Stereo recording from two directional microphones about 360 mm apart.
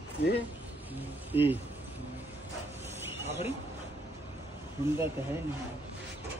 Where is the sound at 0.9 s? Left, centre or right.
Centre.